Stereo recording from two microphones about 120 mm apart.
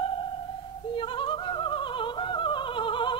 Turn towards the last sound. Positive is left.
turn(degrees=45)  # may be behind; listen again after turning